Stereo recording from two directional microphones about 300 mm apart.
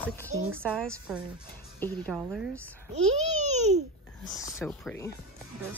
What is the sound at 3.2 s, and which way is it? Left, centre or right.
Babbling, right.